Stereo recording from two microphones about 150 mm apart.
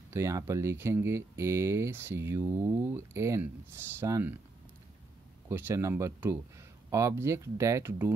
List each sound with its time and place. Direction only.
0.1 s speech: 20° right (ahead or behind)
5.5 s speech: 15° right (ahead or behind)